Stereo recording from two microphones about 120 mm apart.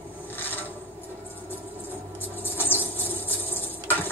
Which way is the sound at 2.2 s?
15° left (ahead or behind).